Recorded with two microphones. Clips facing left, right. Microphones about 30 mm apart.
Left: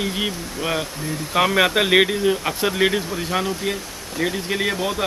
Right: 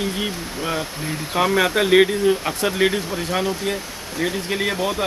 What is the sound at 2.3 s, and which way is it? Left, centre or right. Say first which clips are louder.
Speech: right 1 dB; centre.